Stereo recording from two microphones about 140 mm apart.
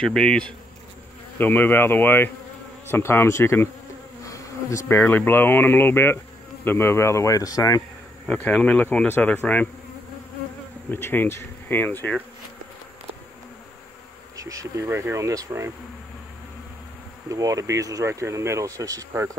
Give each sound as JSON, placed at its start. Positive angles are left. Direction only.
{"t": 0.0, "sound": "speech", "side_deg": 5}
{"t": 4.2, "sound": "bee", "side_deg": 25}
{"t": 4.8, "sound": "speech", "side_deg": 15}
{"t": 8.3, "sound": "speech", "side_deg": 10}
{"t": 10.9, "sound": "speech", "side_deg": 15}
{"t": 14.3, "sound": "speech", "side_deg": -25}
{"t": 17.3, "sound": "speech", "side_deg": -25}